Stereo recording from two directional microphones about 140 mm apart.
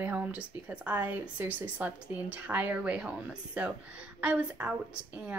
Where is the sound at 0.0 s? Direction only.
10° right (ahead or behind).